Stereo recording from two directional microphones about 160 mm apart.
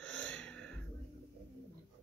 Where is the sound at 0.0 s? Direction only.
5° left (ahead or behind).